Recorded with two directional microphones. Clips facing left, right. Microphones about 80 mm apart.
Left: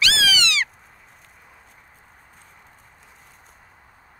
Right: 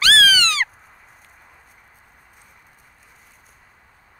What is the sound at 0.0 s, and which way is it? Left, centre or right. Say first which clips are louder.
Owl: right 5 dB; right.